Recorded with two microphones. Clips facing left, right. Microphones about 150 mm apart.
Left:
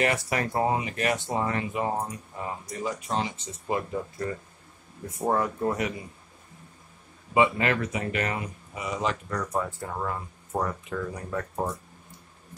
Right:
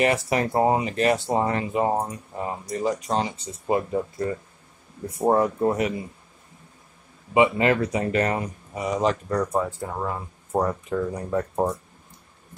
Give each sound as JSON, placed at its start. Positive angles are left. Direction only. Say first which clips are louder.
{"t": 0.0, "sound": "speech", "louder": "right 4 dB", "side_deg": -25}
{"t": 7.3, "sound": "speech", "louder": "right 4 dB", "side_deg": -25}
{"t": 9.6, "sound": "speech", "louder": "right 4 dB", "side_deg": -20}
{"t": 10.5, "sound": "speech", "louder": "right 6 dB", "side_deg": -30}